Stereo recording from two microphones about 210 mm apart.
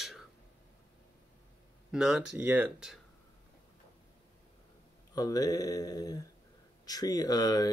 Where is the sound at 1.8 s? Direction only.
5° right (ahead or behind).